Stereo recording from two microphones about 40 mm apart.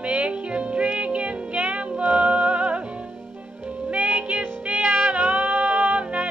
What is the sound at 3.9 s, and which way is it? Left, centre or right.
Music, right.